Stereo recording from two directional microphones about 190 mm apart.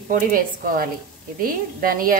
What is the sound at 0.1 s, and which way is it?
Speech, 45° right (ahead or behind).